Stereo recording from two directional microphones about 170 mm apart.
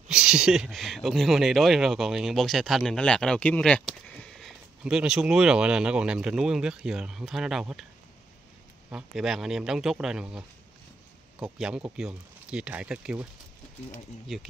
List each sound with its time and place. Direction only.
0.1 s speech: 5° right (ahead or behind)
8.9 s speech: 5° right (ahead or behind)